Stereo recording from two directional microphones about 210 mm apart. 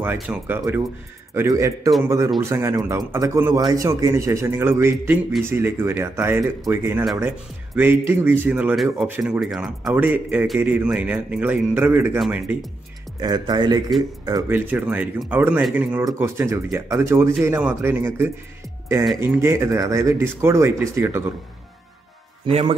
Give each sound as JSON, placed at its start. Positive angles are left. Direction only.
{"t": 0.0, "sound": "speech", "side_deg": -10}
{"t": 13.2, "sound": "speech", "side_deg": -20}
{"t": 22.5, "sound": "speech", "side_deg": -25}